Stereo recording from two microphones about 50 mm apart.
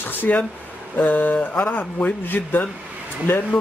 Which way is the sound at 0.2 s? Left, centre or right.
Left.